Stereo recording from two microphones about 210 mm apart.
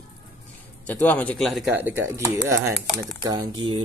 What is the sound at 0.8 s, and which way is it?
A man's voice, 5° left (ahead or behind).